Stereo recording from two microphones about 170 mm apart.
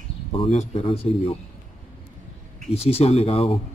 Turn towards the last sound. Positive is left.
turn(degrees=35)  # may be behind; listen again after turning